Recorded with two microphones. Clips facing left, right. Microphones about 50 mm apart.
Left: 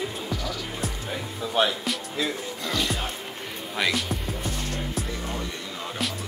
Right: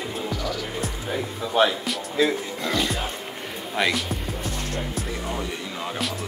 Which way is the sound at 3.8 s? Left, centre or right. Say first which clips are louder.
Right 2 dB; centre.